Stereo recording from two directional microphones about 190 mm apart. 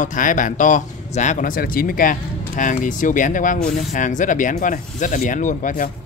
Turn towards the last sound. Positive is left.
turn(degrees=45)  # may be behind; listen again after turning